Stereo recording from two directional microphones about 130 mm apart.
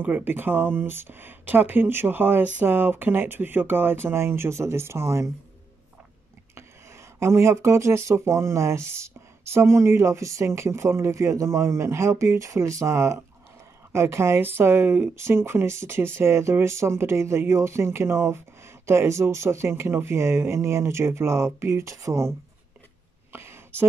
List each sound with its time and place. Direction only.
0.0 s speech: 15° right (ahead or behind)
7.2 s speech: 20° right (ahead or behind)
23.3 s a sound: 20° right (ahead or behind)